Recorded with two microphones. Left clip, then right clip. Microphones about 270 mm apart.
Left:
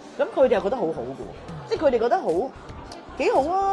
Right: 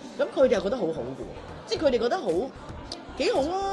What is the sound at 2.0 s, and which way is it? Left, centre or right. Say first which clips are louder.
A woman's voice: left 4 dB; centre.